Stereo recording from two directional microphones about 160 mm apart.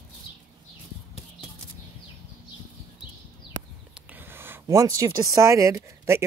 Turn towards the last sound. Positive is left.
turn(degrees=-15)  # may be behind; listen again after turning